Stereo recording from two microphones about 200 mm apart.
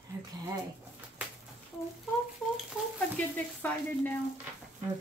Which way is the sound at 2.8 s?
5° right (ahead or behind).